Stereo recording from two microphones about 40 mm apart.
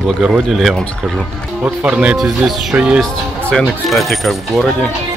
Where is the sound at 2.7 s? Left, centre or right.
Right.